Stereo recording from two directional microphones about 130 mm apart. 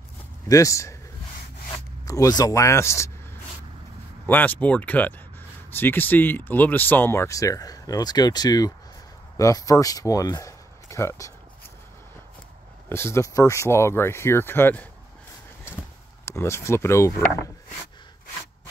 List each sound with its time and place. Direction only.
0.5 s speech: 25° left (ahead or behind)
2.0 s speech: 25° left (ahead or behind)
4.3 s speech: 15° left (ahead or behind)
12.9 s speech: 20° left (ahead or behind)
16.3 s speech: 20° left (ahead or behind)